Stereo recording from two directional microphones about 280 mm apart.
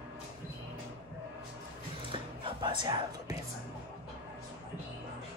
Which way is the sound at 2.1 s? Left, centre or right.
Centre.